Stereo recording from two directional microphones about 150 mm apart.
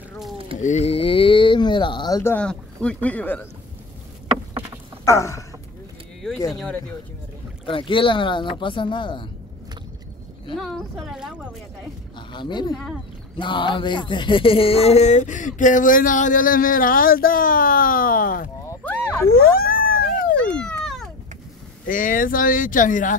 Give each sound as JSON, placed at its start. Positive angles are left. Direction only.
{"t": 0.6, "sound": "a sound", "side_deg": 50}
{"t": 2.3, "sound": "speech", "side_deg": 5}
{"t": 5.0, "sound": "a sound", "side_deg": 20}
{"t": 6.3, "sound": "speech", "side_deg": 20}
{"t": 7.6, "sound": "speech", "side_deg": 35}
{"t": 10.5, "sound": "speech", "side_deg": 0}
{"t": 12.2, "sound": "speech", "side_deg": 30}
{"t": 12.7, "sound": "speech", "side_deg": 0}
{"t": 13.4, "sound": "speech", "side_deg": 35}
{"t": 18.7, "sound": "a sound", "side_deg": 10}
{"t": 19.3, "sound": "a sound", "side_deg": 80}
{"t": 20.5, "sound": "cat", "side_deg": 5}
{"t": 21.8, "sound": "speech", "side_deg": 65}